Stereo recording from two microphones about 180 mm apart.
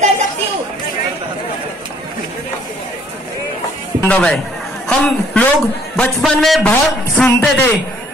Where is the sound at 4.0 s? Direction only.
5° left (ahead or behind).